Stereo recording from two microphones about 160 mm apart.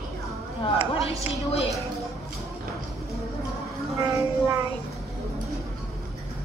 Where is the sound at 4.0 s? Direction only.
20° right (ahead or behind).